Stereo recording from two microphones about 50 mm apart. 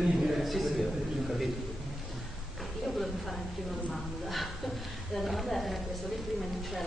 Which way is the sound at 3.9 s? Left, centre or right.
Centre.